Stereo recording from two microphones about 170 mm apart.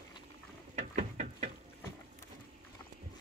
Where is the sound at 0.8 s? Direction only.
40° right (ahead or behind).